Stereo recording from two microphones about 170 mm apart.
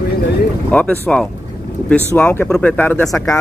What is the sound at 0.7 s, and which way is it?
Speech, 10° left (ahead or behind).